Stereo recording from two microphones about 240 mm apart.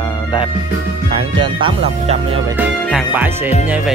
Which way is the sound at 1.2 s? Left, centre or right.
Right.